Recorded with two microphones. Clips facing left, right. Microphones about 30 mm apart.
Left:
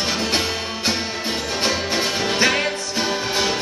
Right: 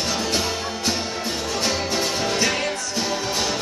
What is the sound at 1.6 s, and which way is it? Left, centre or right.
Music, left.